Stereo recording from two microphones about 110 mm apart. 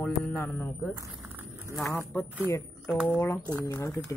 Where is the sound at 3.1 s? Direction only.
25° left (ahead or behind).